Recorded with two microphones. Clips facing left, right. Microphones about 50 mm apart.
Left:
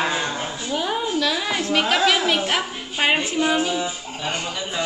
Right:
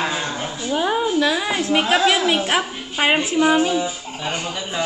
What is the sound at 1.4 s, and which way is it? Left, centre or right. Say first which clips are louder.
Speech: right 2 dB; centre.